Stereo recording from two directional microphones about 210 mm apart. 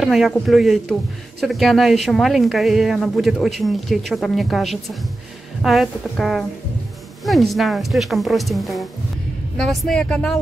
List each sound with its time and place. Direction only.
0.0 s speech: centre (ahead or behind)